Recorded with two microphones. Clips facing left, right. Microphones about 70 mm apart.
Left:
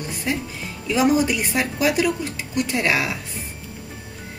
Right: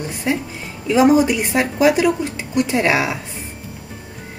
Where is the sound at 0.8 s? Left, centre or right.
Centre.